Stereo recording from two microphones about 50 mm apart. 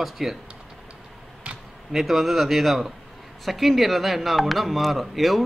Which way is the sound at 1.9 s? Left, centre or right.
Centre.